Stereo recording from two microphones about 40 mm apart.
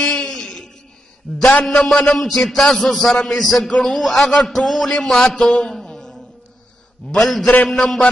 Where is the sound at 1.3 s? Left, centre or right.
Centre.